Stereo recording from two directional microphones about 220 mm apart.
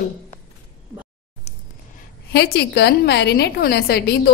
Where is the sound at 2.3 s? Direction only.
45° left (ahead or behind).